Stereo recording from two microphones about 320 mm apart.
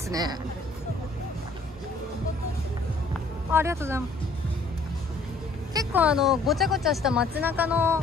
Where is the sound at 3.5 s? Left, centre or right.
Centre.